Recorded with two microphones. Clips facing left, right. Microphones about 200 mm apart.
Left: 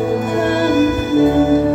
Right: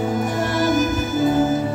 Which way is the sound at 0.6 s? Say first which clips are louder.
Left 3 dB; 55° left (ahead or behind).